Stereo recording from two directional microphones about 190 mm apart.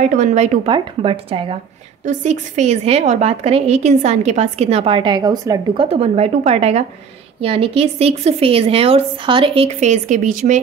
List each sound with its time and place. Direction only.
0.1 s speech: 40° right (ahead or behind)
0.7 s speech: 25° right (ahead or behind)
5.9 s speech: 30° right (ahead or behind)